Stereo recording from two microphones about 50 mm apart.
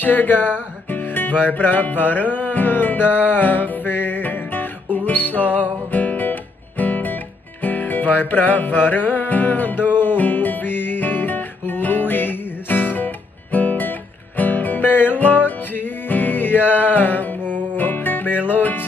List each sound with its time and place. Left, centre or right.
0.0 s music: left